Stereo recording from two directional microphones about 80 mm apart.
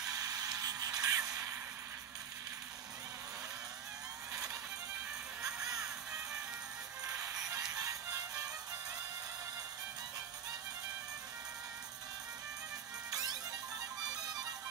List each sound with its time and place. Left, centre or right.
0.1 s a sound: right
7.1 s music: right
13.1 s music: right